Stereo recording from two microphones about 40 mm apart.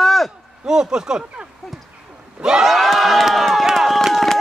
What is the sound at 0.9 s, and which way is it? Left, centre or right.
Speech, centre.